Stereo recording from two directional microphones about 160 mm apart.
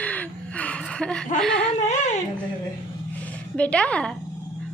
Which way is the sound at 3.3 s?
10° left (ahead or behind).